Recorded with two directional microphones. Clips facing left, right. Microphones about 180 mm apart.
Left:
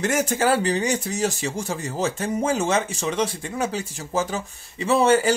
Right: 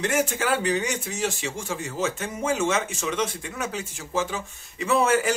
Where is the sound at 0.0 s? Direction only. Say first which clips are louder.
Left 3 dB; 40° left (ahead or behind).